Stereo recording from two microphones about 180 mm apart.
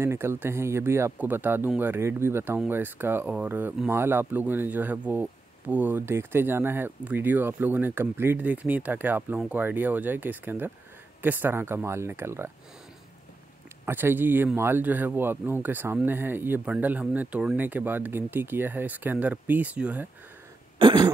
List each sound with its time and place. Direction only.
0.0 s speech: 15° right (ahead or behind)
13.8 s speech: 10° right (ahead or behind)
20.8 s throat clearing: 25° right (ahead or behind)